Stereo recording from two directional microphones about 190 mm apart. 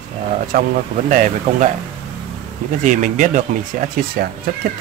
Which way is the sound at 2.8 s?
40° right (ahead or behind).